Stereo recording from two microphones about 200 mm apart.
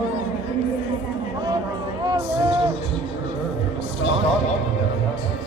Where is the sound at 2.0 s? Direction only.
20° right (ahead or behind).